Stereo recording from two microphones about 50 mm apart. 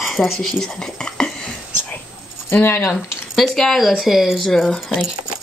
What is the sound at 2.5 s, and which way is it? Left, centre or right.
Speech, left.